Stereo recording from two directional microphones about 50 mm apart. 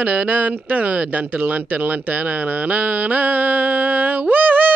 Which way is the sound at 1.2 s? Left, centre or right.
Right.